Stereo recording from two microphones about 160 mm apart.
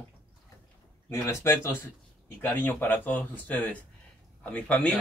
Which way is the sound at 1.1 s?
15° left (ahead or behind).